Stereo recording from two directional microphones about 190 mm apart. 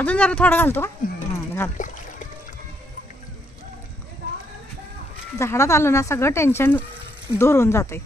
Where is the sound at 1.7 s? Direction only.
40° left (ahead or behind).